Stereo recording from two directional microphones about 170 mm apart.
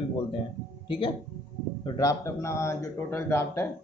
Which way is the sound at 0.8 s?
30° left (ahead or behind).